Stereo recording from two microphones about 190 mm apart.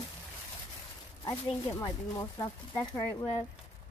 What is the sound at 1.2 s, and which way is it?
Speech, 20° left (ahead or behind).